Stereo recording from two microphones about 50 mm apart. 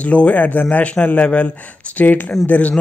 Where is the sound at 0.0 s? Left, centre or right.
Left.